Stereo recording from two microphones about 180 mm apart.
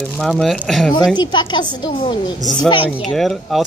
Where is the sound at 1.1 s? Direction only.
25° left (ahead or behind).